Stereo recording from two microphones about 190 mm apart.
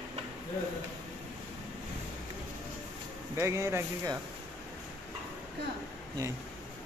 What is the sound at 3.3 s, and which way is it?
Speech, 15° right (ahead or behind).